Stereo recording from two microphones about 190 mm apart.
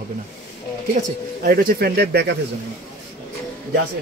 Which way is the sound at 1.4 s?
50° right (ahead or behind).